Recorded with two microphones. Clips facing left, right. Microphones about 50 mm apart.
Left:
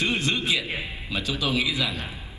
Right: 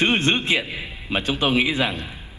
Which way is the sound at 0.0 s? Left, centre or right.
Right.